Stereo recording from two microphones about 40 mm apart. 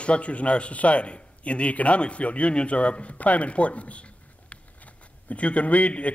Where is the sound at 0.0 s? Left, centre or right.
Left.